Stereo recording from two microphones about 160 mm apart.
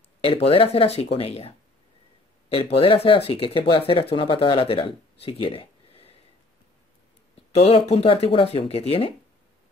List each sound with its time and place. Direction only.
0.2 s speech: 35° left (ahead or behind)
2.5 s speech: 35° left (ahead or behind)
5.2 s a sound: 35° left (ahead or behind)
7.5 s speech: 40° left (ahead or behind)